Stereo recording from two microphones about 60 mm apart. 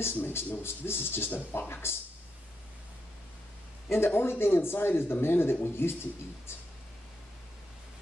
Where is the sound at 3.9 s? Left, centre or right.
Left.